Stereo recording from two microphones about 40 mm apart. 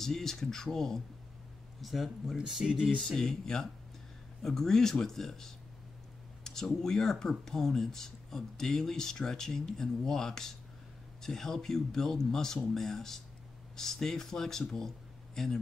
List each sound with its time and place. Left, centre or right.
0.0 s speech: centre
1.8 s speech: centre
2.3 s speech: centre
3.1 s speech: centre